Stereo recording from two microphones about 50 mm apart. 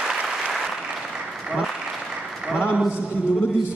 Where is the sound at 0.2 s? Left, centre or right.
Centre.